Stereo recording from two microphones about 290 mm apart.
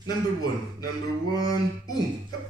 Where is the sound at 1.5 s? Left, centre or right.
Centre.